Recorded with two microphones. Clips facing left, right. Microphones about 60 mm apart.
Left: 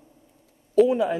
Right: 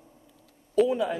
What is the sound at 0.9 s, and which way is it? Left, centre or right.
Speech, left.